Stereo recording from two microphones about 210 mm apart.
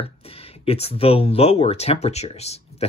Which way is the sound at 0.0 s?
30° left (ahead or behind).